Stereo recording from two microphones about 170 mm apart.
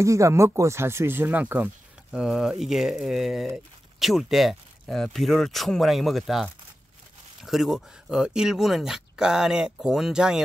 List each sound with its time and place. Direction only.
0.0 s speech: 15° right (ahead or behind)